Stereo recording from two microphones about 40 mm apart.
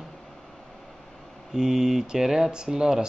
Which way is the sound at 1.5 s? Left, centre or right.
Centre.